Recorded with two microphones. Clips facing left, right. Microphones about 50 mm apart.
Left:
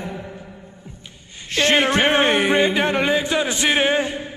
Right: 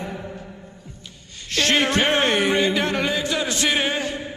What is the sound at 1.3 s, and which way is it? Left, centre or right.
Speech, centre.